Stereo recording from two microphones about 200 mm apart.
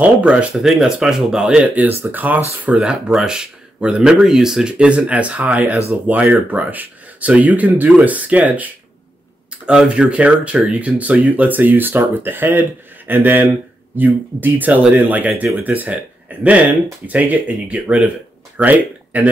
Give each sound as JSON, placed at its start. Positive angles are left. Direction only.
{"t": 0.0, "sound": "speech", "side_deg": -5}